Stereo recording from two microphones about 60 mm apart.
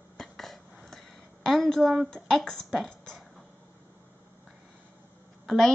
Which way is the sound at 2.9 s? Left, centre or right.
Centre.